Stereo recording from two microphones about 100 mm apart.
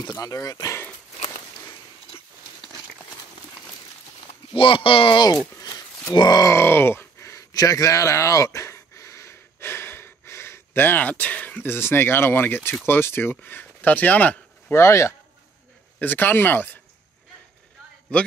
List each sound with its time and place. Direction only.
0.0 s speech: 35° left (ahead or behind)
4.5 s speech: 60° left (ahead or behind)
5.6 s a sound: 40° left (ahead or behind)
6.1 s speech: 45° left (ahead or behind)
6.5 s a sound: 25° left (ahead or behind)
12.8 s speech: 20° left (ahead or behind)
14.7 s speech: 25° left (ahead or behind)
18.1 s a man's voice: 10° left (ahead or behind)